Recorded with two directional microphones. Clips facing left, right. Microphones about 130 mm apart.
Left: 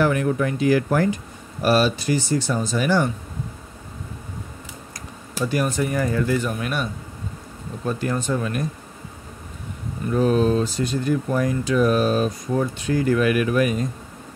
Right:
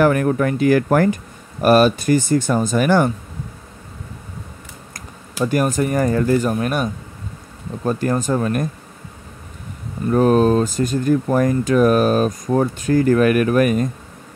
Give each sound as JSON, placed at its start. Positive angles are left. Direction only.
{"t": 0.0, "sound": "speech", "side_deg": -55}
{"t": 4.9, "sound": "speech", "side_deg": -50}
{"t": 10.1, "sound": "speech", "side_deg": -50}